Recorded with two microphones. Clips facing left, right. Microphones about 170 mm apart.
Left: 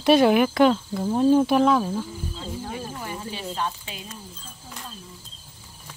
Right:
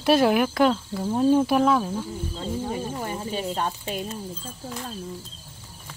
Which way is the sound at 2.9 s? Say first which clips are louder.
Right 4 dB; 35° right (ahead or behind).